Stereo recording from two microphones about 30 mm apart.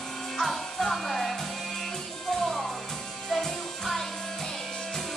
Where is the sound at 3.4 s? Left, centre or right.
Centre.